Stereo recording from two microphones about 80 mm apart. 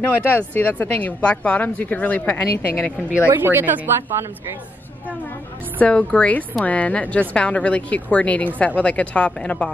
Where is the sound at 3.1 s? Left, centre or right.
Right.